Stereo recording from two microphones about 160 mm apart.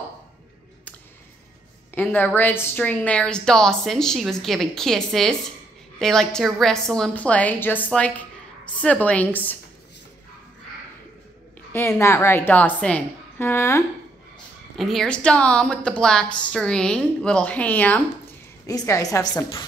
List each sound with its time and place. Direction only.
2.0 s a woman's voice: 10° left (ahead or behind)
11.7 s a woman's voice: 15° left (ahead or behind)
14.8 s a woman's voice: centre (ahead or behind)
18.7 s a woman's voice: 20° left (ahead or behind)